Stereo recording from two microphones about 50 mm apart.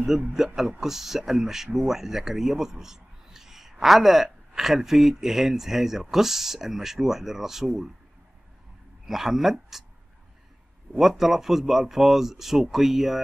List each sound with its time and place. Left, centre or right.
0.6 s speech: centre
9.0 s speech: centre
11.0 s speech: centre